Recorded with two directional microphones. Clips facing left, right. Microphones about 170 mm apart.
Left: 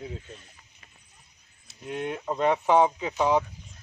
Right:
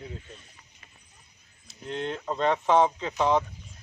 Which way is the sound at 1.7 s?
10° left (ahead or behind).